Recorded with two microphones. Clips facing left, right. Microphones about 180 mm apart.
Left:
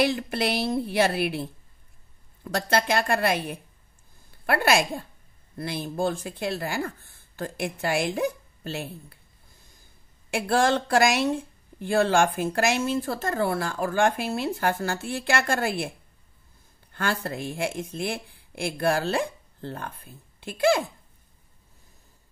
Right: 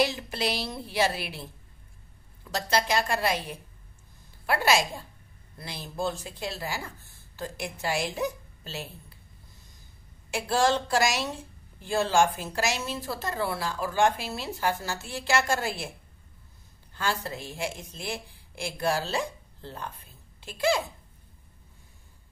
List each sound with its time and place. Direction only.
0.0 s a woman's voice: 55° left (ahead or behind)
10.3 s a woman's voice: 55° left (ahead or behind)
16.9 s speech: 55° left (ahead or behind)